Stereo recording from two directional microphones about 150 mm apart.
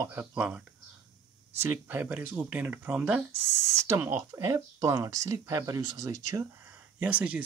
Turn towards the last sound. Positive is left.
turn(degrees=-10)  # may be behind; listen again after turning